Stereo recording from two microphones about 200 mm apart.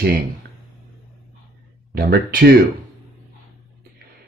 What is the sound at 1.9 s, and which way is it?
Speech, 50° right (ahead or behind).